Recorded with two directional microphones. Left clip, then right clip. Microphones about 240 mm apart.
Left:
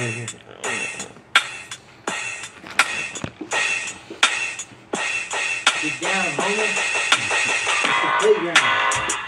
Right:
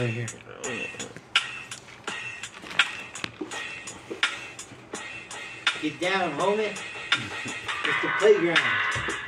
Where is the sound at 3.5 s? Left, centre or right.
Left.